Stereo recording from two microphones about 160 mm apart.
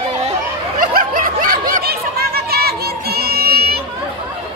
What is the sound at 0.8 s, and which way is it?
Snicker, 60° right (ahead or behind).